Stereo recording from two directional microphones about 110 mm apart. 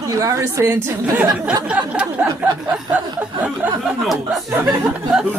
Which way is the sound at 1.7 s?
10° right (ahead or behind).